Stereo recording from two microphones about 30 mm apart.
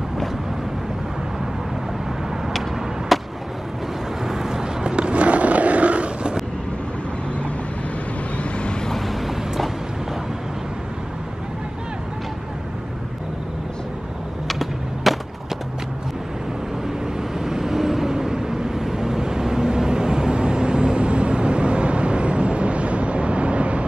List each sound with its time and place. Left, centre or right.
3.1 s a sound: centre
4.3 s vehicle: centre
4.8 s a sound: right
8.9 s vehicle: centre
14.5 s skateboard: centre
17.2 s vehicle: centre; by 23.9 s right